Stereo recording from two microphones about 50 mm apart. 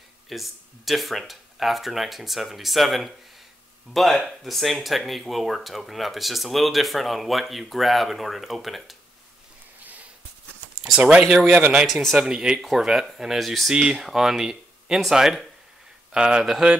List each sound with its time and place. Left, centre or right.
0.3 s speech: centre
10.8 s speech: centre
11.7 s speech: centre
12.2 s speech: centre
16.1 s speech: centre